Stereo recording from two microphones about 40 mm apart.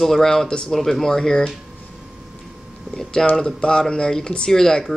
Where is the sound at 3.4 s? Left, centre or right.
Centre.